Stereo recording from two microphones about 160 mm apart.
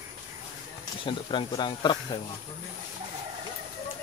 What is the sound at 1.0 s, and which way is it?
Speech, 30° left (ahead or behind).